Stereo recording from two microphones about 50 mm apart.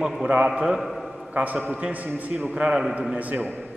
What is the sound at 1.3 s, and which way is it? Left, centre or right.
A man's voice, right.